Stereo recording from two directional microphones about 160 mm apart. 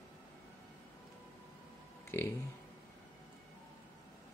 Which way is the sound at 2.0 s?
15° left (ahead or behind).